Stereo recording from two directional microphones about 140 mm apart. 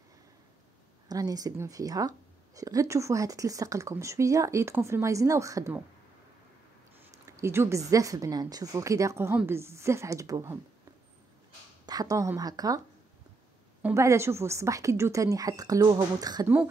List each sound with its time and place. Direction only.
1.0 s speech: 25° right (ahead or behind)
7.2 s speech: 20° right (ahead or behind)
11.8 s speech: 25° right (ahead or behind)
13.9 s speech: 20° right (ahead or behind)